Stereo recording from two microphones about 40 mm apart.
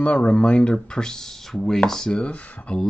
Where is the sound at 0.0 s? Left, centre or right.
Left; by 1.8 s centre.